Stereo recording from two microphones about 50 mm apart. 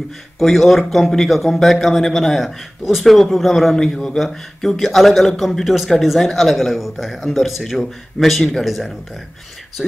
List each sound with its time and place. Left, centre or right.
0.4 s speech: centre
3.7 s a man's voice: centre
9.8 s a man's voice: centre